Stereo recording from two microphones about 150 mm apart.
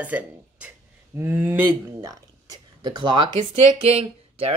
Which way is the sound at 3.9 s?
40° right (ahead or behind).